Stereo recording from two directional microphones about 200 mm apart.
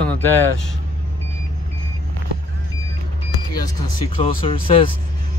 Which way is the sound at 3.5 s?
20° left (ahead or behind).